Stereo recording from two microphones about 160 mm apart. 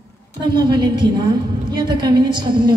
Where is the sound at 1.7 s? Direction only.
30° right (ahead or behind).